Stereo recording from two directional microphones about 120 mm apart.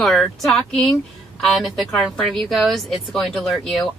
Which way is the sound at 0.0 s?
Centre (ahead or behind).